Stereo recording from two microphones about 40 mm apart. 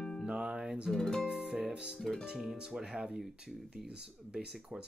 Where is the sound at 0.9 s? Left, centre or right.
Centre.